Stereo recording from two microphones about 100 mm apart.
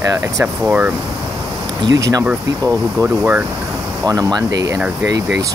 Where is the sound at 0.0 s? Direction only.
30° right (ahead or behind).